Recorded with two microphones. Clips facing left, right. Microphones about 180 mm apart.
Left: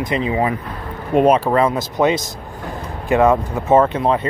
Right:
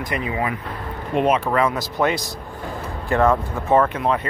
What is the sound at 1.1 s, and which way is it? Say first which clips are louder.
Speech: left 5 dB; 35° left (ahead or behind).